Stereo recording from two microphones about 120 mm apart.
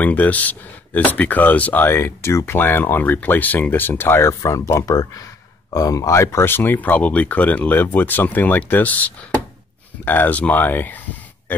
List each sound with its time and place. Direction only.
0.0 s speech: 15° left (ahead or behind)